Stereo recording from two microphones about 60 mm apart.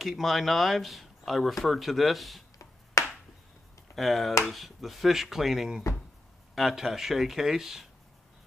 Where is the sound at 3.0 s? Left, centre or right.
Left.